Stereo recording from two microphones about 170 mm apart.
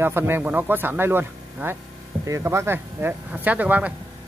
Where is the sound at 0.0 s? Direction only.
15° right (ahead or behind).